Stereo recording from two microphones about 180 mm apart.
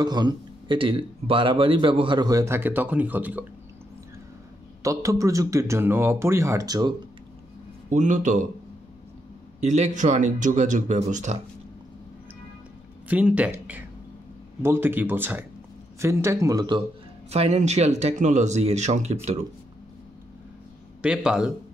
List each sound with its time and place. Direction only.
0.0 s speech: 25° right (ahead or behind)
4.8 s speech: 15° right (ahead or behind)
7.9 s speech: 40° right (ahead or behind)
9.6 s speech: 40° right (ahead or behind)
13.1 s speech: 10° right (ahead or behind); by 16.8 s 25° right (ahead or behind)
17.3 s speech: 40° right (ahead or behind)
21.0 s a man's voice: 5° right (ahead or behind)